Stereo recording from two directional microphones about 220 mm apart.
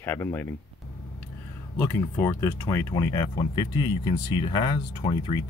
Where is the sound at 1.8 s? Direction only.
10° left (ahead or behind).